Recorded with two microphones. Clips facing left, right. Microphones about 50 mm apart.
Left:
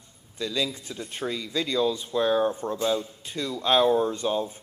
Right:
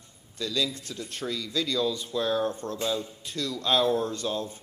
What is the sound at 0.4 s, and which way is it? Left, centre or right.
Speech, centre.